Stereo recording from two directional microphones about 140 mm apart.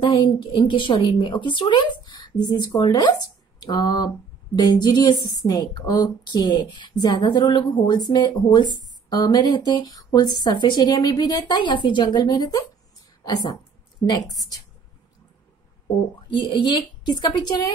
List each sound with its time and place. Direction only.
0.0 s a woman's voice: 35° left (ahead or behind)
16.3 s speech: 30° left (ahead or behind)